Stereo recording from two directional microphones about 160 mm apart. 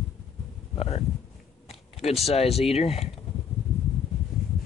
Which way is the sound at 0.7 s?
40° left (ahead or behind).